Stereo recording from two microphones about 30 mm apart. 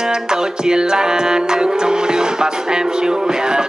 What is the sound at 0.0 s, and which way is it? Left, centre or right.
Music, right.